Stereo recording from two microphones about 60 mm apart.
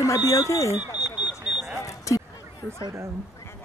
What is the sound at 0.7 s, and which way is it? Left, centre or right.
Alarm, right.